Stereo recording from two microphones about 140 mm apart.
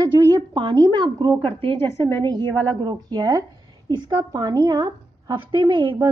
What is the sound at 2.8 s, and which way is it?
A woman's voice, 30° right (ahead or behind).